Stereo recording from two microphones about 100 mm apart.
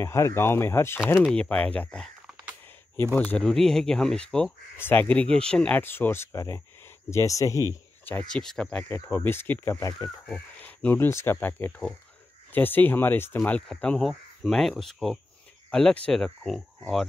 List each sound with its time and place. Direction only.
0.0 s speech: 25° left (ahead or behind)
1.2 s speech: 10° left (ahead or behind)
3.2 s speech: 20° left (ahead or behind)
3.4 s speech: 5° left (ahead or behind)
4.7 s speech: 20° left (ahead or behind)
5.8 s speech: 20° left (ahead or behind)
8.0 s a sound: 15° left (ahead or behind)
8.3 s speech: 5° left (ahead or behind)
8.8 s speech: 25° left (ahead or behind)
9.8 s speech: 35° left (ahead or behind)
10.2 s speech: 10° left (ahead or behind)
13.4 s speech: 5° left (ahead or behind)